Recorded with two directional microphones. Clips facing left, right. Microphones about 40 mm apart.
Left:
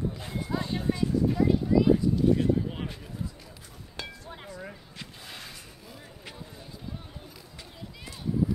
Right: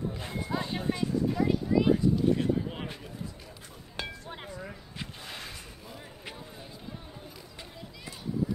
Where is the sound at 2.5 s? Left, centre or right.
Centre.